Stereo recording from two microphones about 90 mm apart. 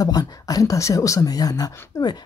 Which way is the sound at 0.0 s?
45° left (ahead or behind).